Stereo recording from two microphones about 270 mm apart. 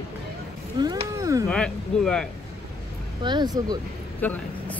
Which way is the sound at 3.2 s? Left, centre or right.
Centre.